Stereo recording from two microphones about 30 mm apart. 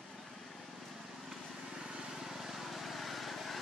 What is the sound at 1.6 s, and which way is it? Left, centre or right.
Vehicle, right.